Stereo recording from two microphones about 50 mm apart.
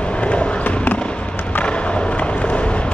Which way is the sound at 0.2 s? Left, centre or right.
Left.